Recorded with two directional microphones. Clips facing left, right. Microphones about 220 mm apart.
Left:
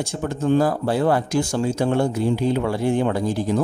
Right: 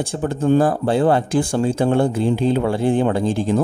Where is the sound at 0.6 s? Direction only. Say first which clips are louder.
Right 3 dB; 30° right (ahead or behind).